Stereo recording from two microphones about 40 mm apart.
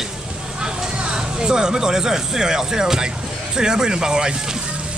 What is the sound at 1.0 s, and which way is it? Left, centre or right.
Speech, right.